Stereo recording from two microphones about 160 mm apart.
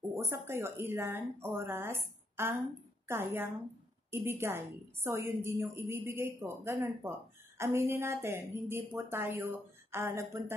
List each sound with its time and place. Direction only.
0.1 s a woman's voice: 15° right (ahead or behind)